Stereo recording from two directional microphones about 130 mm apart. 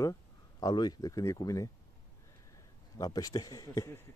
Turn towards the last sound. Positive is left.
turn(degrees=25)  # may be behind; listen again after turning